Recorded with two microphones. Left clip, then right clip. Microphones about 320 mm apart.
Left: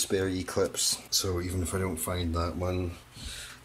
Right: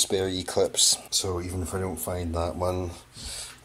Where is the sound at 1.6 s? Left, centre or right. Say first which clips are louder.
Right 1 dB; centre.